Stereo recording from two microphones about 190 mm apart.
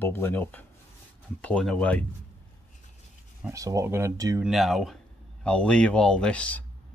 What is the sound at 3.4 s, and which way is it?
Speech, 15° right (ahead or behind).